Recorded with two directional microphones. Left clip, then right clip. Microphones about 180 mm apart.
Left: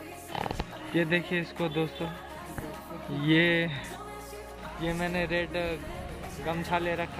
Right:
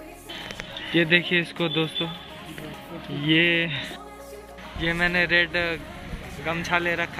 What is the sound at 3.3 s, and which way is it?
Speech, 65° left (ahead or behind).